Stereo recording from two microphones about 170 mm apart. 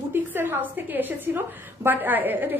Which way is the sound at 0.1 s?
10° right (ahead or behind).